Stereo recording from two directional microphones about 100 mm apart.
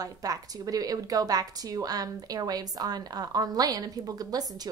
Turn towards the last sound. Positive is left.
turn(degrees=-40)  # may be behind; listen again after turning